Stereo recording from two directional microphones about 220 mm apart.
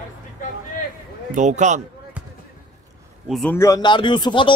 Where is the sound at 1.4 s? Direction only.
35° right (ahead or behind).